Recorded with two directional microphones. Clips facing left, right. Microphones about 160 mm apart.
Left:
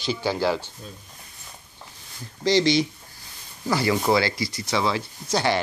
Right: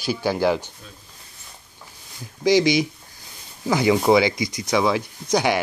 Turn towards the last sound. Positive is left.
turn(degrees=-15)  # may be behind; listen again after turning